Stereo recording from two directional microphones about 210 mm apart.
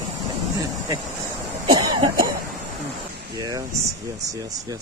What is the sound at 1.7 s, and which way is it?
Cough, 20° right (ahead or behind).